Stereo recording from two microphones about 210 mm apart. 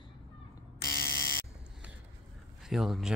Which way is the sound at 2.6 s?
Centre (ahead or behind).